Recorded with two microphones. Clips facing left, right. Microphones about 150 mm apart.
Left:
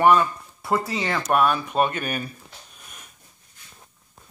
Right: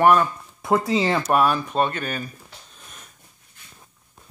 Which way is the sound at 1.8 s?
15° left (ahead or behind).